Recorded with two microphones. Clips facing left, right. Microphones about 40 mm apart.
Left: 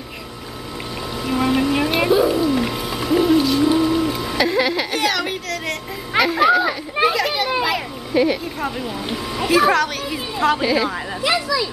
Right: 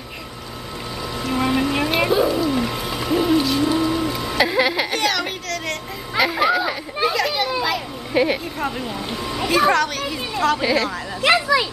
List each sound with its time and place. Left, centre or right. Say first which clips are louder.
1.2 s music: left 2 dB; centre
3.6 s a sound: left 3 dB; centre
7.0 s children playing: left 2 dB; centre
8.1 s speech: left 1 dB; centre
8.5 s a child's voice: even; centre
11.2 s a child's voice: right 4 dB; right